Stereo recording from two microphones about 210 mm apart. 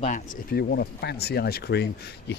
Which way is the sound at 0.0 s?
40° left (ahead or behind).